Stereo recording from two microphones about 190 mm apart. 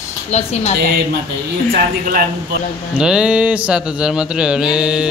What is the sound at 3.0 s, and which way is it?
Mantra, 5° right (ahead or behind).